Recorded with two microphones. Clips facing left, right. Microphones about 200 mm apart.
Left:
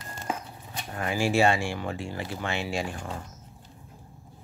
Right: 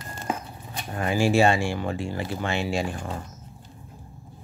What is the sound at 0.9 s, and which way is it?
Speech, 30° right (ahead or behind).